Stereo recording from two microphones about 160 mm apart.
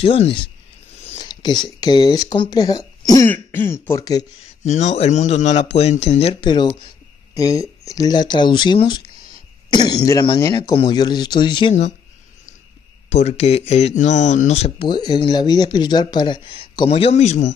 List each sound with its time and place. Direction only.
0.0 s a man's voice: 35° left (ahead or behind)
4.6 s a man's voice: 45° left (ahead or behind); by 11.7 s 30° left (ahead or behind)
13.1 s speech: 40° left (ahead or behind)
14.8 s speech: 25° left (ahead or behind); by 17.5 s 45° left (ahead or behind)